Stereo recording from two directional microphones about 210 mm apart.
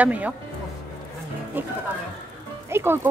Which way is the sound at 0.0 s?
5° right (ahead or behind).